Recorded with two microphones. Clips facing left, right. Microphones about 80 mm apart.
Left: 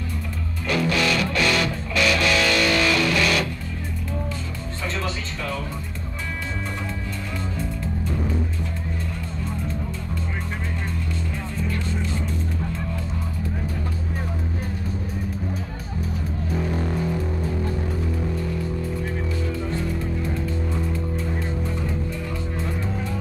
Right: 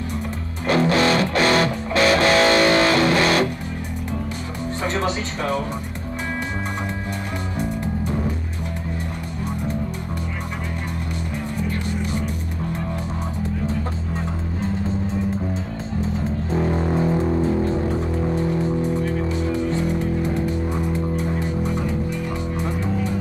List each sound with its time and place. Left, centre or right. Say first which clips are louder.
0.7 s music: right 5 dB; right
4.9 s music: right 6 dB; right
7.5 s music: right 4 dB; centre
16.0 s music: right 4 dB; right